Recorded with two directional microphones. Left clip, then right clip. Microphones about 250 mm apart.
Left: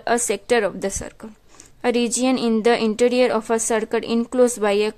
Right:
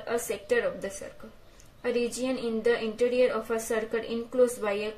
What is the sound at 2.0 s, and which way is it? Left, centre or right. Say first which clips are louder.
Speech: left 7 dB; left.